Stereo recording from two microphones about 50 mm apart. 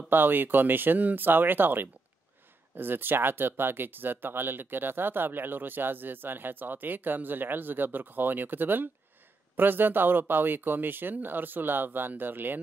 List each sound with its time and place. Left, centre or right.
0.1 s speech: right